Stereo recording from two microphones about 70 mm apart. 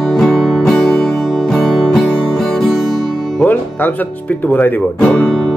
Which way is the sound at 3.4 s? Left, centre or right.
Left.